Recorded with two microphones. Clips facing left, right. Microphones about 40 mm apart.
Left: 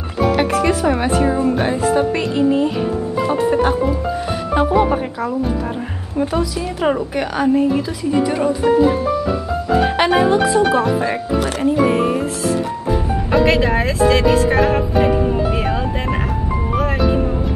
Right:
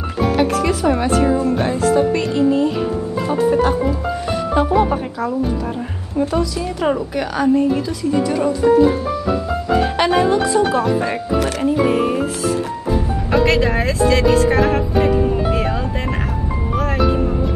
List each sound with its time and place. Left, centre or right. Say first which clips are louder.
0.4 s a woman's voice: right 1 dB; centre
6.1 s a woman's voice: even; centre
8.0 s speech: left 1 dB; centre
8.7 s speech: right 2 dB; left
9.9 s speech: left 1 dB; centre
10.5 s speech: left 1 dB; left
11.8 s speech: left 1 dB; centre
12.9 s music: left 1 dB; centre